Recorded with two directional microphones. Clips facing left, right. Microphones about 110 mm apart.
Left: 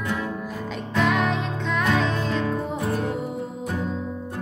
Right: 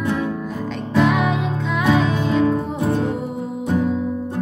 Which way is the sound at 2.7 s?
30° right (ahead or behind).